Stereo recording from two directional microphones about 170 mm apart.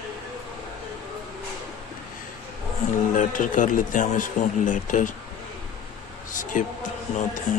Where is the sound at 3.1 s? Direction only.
50° left (ahead or behind).